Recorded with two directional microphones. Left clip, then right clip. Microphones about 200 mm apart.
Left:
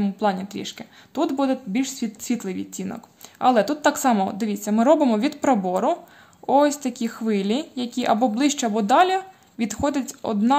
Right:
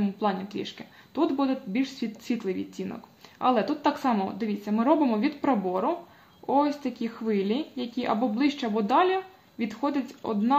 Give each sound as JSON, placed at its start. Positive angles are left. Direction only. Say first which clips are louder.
{"t": 0.0, "sound": "speech", "louder": "left 5 dB", "side_deg": 40}